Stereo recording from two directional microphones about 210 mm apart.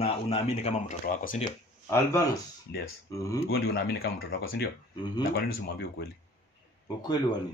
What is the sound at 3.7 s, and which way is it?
Speech, 60° left (ahead or behind).